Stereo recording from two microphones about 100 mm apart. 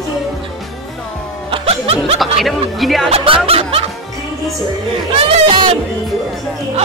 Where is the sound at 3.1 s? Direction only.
70° right (ahead or behind).